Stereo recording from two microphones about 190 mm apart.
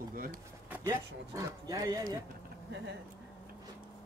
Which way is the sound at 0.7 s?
15° right (ahead or behind).